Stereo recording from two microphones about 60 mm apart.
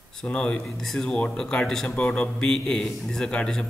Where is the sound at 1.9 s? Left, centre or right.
Centre.